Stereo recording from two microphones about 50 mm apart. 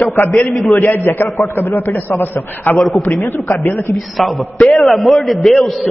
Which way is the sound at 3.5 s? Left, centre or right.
Left.